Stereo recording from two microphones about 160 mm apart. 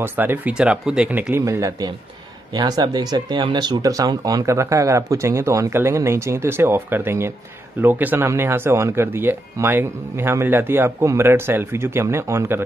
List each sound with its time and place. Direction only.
0.0 s speech: 15° right (ahead or behind)